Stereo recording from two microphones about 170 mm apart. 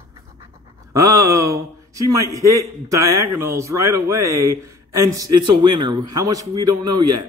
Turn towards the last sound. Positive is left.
turn(degrees=-25)  # may be behind; listen again after turning